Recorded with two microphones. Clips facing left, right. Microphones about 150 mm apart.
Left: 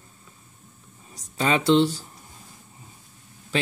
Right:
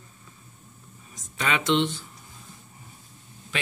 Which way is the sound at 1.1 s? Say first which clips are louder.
Left 4 dB; 35° left (ahead or behind).